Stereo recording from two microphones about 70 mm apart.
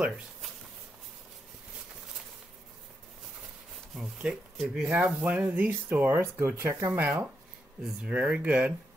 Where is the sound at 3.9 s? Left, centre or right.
Centre.